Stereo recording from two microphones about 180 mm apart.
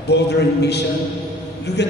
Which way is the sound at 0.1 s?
70° left (ahead or behind).